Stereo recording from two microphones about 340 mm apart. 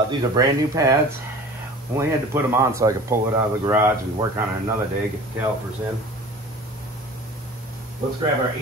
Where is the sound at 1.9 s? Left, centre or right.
Centre.